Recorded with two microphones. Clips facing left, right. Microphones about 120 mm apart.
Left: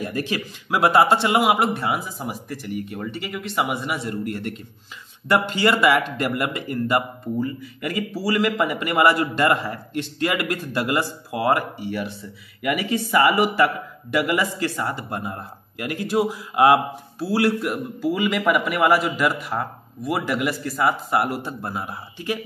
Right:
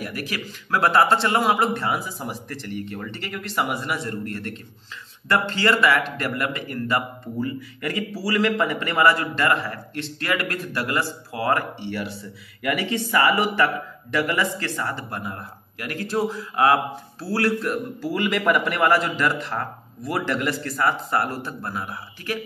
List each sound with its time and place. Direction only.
0.0 s a man's voice: 25° left (ahead or behind)
7.3 s a man's voice: 5° left (ahead or behind)
11.9 s speech: centre (ahead or behind)
14.1 s a man's voice: 15° left (ahead or behind)
18.0 s a man's voice: centre (ahead or behind); by 22.4 s 20° left (ahead or behind)